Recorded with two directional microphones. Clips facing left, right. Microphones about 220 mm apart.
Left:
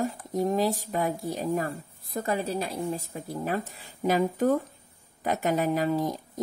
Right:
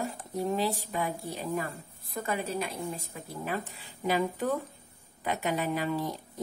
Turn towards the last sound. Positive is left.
turn(degrees=40)  # may be behind; listen again after turning